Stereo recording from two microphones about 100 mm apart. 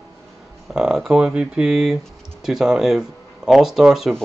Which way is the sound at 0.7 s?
5° right (ahead or behind).